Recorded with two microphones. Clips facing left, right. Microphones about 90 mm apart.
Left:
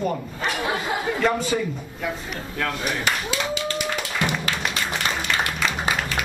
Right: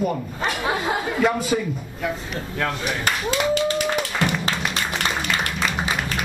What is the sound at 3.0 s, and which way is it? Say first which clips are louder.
Speech: right 3 dB; 45° right (ahead or behind).